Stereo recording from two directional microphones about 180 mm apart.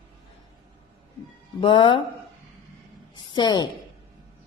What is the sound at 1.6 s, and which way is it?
Speech, 25° left (ahead or behind).